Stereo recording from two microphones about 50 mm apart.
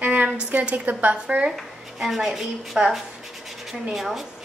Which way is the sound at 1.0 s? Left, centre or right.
Right.